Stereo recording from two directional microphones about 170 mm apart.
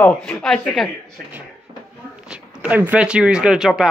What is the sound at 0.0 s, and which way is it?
Speech, 10° left (ahead or behind).